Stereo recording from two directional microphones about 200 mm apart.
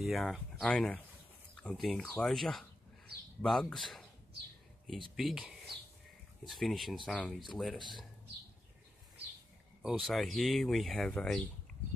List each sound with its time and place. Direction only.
0.0 s speech: centre (ahead or behind)
5.1 s speech: centre (ahead or behind)
9.8 s speech: centre (ahead or behind)